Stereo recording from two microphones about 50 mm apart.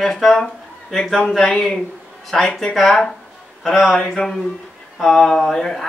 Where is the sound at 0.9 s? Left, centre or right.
Centre.